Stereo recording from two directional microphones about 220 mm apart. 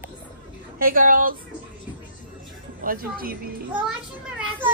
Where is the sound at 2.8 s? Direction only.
40° right (ahead or behind).